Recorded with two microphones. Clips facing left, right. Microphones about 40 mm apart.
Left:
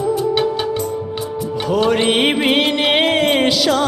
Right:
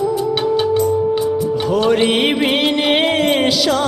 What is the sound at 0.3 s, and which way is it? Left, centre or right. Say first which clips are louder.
Music: right 2 dB; centre.